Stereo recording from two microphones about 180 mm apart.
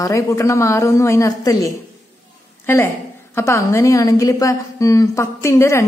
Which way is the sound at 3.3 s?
15° left (ahead or behind).